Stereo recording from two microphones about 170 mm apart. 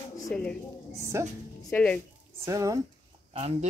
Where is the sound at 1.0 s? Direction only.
15° right (ahead or behind).